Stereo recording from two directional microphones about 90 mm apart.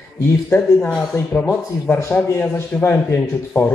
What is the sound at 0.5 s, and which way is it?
A man's voice, 20° left (ahead or behind).